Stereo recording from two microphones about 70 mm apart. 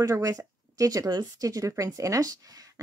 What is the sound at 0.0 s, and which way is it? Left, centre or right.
Speech, right.